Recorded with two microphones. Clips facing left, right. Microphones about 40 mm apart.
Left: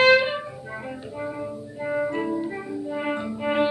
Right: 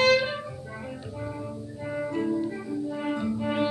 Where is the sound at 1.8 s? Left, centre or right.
Left.